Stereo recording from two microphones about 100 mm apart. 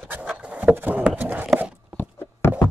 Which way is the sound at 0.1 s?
10° right (ahead or behind).